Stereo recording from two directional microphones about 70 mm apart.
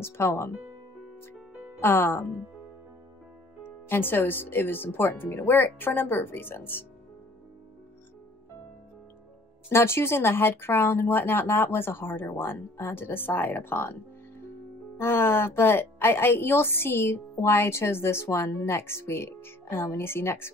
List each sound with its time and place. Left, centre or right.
0.0 s a woman's voice: left
1.8 s a woman's voice: left
3.6 s a woman's voice: left
9.7 s a woman's voice: left
15.0 s a woman's voice: left